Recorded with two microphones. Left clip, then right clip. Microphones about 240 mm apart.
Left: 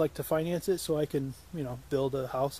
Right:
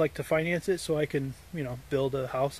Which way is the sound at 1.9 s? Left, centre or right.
Centre.